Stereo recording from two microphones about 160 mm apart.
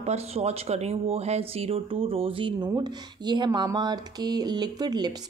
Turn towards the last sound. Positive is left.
turn(degrees=-25)  # may be behind; listen again after turning